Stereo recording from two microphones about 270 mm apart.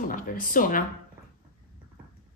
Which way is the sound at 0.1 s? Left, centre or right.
Left.